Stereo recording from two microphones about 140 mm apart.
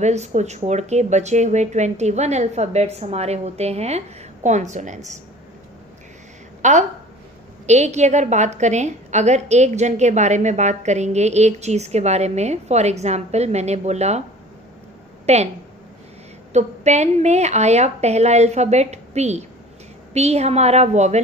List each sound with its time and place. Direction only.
0.0 s a woman's voice: 55° right (ahead or behind)
6.6 s a woman's voice: 60° right (ahead or behind)
15.2 s a woman's voice: 50° right (ahead or behind)
16.5 s a woman's voice: 55° right (ahead or behind)